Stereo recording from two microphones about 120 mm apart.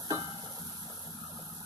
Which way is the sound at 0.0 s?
35° right (ahead or behind).